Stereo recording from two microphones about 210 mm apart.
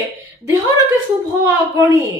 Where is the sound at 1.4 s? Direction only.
15° right (ahead or behind).